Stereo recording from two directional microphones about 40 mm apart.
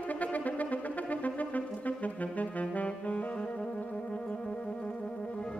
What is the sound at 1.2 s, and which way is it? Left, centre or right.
Brass instrument, left.